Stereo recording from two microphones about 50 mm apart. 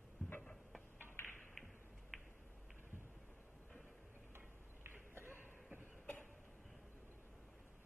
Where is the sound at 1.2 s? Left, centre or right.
Left.